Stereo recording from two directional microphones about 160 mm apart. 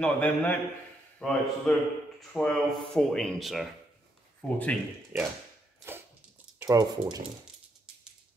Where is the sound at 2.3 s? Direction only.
5° left (ahead or behind).